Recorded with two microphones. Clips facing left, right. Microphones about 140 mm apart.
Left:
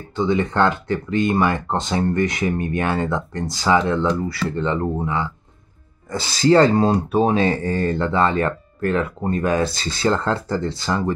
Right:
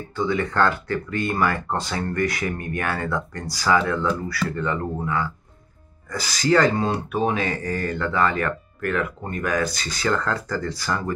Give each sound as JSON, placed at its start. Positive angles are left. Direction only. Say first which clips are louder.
{"t": 0.1, "sound": "speech", "louder": "left 4 dB", "side_deg": 20}